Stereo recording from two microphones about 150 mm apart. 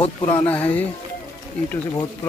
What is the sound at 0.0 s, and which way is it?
Speech, 10° left (ahead or behind).